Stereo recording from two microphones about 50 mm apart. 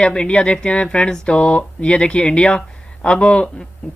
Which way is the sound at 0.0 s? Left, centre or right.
Centre.